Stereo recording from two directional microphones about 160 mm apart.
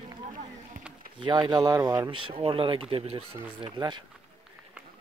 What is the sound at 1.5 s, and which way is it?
Speech, 25° right (ahead or behind).